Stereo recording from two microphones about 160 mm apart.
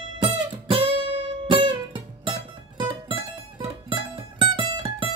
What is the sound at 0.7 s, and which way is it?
Music, 35° right (ahead or behind).